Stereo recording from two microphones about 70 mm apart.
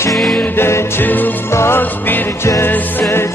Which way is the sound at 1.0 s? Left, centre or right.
Left.